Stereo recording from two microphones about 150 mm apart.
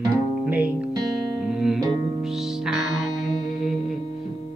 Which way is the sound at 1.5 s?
5° right (ahead or behind).